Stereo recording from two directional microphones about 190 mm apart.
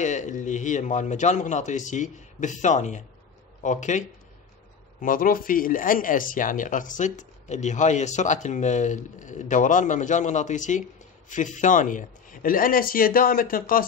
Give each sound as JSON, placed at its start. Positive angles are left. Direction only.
{"t": 0.0, "sound": "speech", "side_deg": 40}
{"t": 5.0, "sound": "a man's voice", "side_deg": 45}